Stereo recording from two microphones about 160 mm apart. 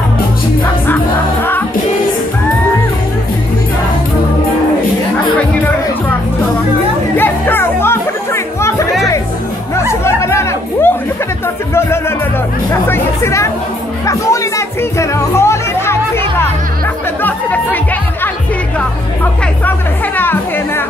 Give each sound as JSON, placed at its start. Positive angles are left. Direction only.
{"t": 7.2, "sound": "music", "side_deg": 15}
{"t": 9.8, "sound": "music", "side_deg": 15}
{"t": 12.8, "sound": "chatter", "side_deg": 15}
{"t": 14.0, "sound": "music", "side_deg": 20}
{"t": 20.2, "sound": "music", "side_deg": 15}